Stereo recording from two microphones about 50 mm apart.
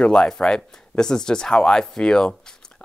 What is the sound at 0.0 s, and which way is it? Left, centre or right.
A man's voice, centre.